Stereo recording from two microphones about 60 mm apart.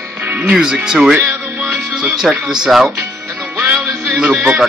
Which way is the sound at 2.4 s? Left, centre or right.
Centre.